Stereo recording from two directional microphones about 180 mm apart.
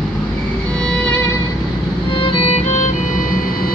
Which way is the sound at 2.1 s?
30° left (ahead or behind).